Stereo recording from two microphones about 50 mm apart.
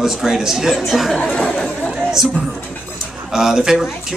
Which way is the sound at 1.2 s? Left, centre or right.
Left.